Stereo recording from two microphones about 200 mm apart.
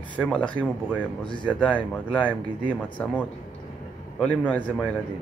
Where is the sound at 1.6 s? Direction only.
5° left (ahead or behind).